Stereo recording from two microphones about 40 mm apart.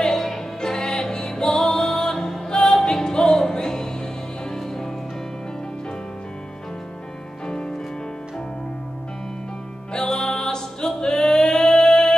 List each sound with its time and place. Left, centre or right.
0.0 s music: centre
7.4 s music: left
9.9 s music: centre